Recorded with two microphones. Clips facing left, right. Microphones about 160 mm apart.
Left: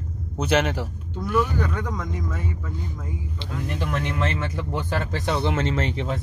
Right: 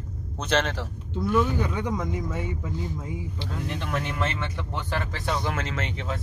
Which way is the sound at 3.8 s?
Centre (ahead or behind).